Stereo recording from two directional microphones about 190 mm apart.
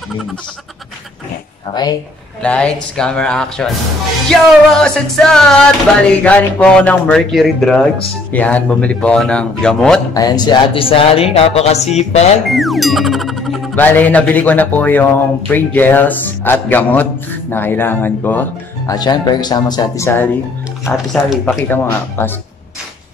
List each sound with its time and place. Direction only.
1.7 s speech: 20° left (ahead or behind)
2.4 s speech: 5° left (ahead or behind)
10.1 s speech: 20° left (ahead or behind); by 12.3 s 35° left (ahead or behind)
12.4 s speech: centre (ahead or behind)
18.9 s speech: 20° left (ahead or behind)
20.8 s speech: centre (ahead or behind)
21.5 s speech: 10° left (ahead or behind)